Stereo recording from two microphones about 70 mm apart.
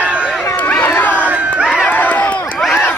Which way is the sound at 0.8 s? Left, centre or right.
Left.